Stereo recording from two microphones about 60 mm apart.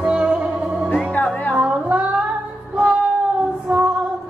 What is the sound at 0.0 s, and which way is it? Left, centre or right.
Music, centre.